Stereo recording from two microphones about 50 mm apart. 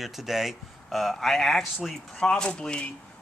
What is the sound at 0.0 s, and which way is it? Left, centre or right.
Speech, centre.